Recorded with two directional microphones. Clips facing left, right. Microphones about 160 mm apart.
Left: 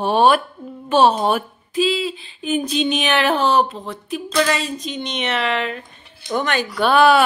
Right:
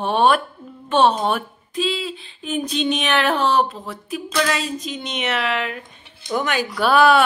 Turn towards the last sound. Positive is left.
turn(degrees=0)  # may be behind; listen again after turning